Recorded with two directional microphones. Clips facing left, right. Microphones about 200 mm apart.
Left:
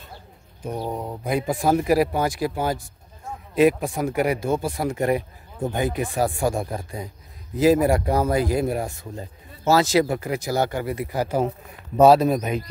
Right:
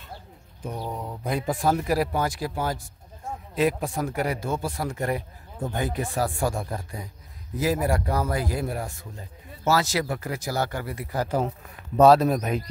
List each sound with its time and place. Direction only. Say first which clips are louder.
0.7 s speech: left 5 dB; 25° left (ahead or behind)
1.2 s a man's voice: left 2 dB; 10° left (ahead or behind)